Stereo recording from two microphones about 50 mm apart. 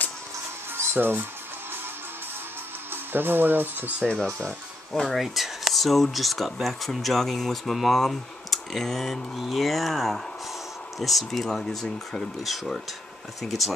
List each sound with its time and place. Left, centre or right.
0.9 s speech: right
2.9 s speech: right
4.0 s speech: centre
5.0 s speech: centre